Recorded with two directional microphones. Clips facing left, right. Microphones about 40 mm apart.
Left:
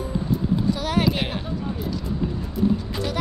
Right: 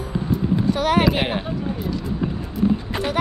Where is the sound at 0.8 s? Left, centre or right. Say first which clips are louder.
Right 4 dB; right.